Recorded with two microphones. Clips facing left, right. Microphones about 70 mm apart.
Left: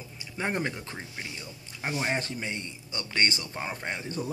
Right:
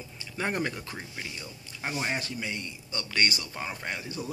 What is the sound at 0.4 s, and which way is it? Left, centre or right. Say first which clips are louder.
Speech: even; left.